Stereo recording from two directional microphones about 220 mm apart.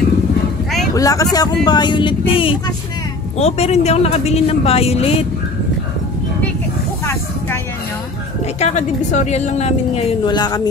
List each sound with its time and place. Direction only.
0.9 s a woman's voice: 15° left (ahead or behind)
8.5 s a woman's voice: 30° left (ahead or behind)